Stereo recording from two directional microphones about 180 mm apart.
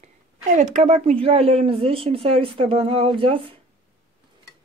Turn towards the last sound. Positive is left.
turn(degrees=-30)  # may be behind; listen again after turning